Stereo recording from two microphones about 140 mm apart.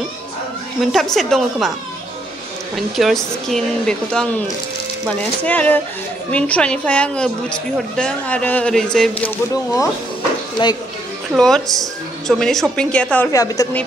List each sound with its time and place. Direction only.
0.7 s a woman's voice: centre (ahead or behind)
2.7 s a woman's voice: centre (ahead or behind)
9.5 s speech: 25° left (ahead or behind)
11.3 s a woman's voice: 5° left (ahead or behind)
13.3 s speech: 25° left (ahead or behind)